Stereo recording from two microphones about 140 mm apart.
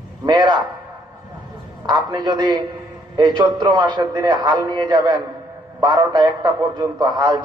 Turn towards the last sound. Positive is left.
turn(degrees=-30)  # may be behind; listen again after turning